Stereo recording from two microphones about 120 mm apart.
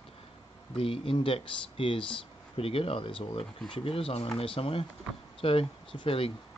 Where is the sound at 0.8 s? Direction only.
50° left (ahead or behind).